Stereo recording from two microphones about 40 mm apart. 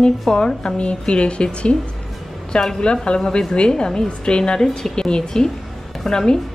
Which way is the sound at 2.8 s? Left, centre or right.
Left.